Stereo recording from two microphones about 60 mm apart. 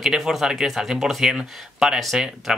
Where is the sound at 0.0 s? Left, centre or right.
Centre.